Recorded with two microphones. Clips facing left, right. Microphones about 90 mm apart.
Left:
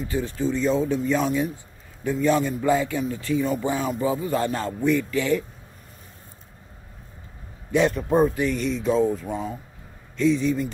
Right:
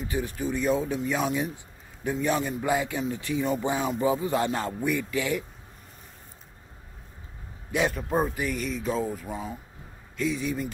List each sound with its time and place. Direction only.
0.0 s speech: 15° right (ahead or behind)
7.7 s speech: 5° right (ahead or behind)